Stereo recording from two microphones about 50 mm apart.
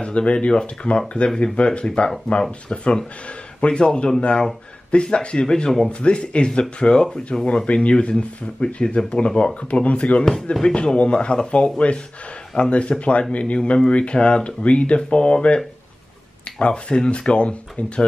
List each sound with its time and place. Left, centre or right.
0.0 s speech: left